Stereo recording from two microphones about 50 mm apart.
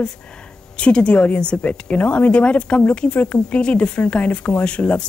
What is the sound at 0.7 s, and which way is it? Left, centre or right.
Speech, left.